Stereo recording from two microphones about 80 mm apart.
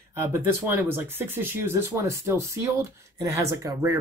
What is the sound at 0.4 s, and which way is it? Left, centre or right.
Speech, right.